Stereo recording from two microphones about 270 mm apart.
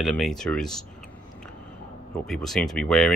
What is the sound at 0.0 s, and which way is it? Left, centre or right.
Speech, centre.